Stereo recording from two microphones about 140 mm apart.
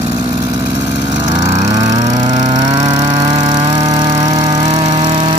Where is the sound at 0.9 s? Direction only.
30° right (ahead or behind).